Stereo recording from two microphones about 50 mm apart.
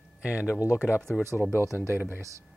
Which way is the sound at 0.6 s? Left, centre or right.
Left.